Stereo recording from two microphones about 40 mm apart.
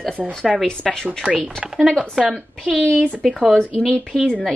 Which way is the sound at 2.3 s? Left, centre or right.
Centre.